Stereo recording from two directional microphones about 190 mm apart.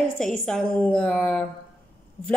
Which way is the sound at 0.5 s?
5° left (ahead or behind).